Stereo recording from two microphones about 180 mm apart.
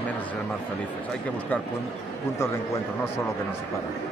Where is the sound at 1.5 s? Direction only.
10° left (ahead or behind).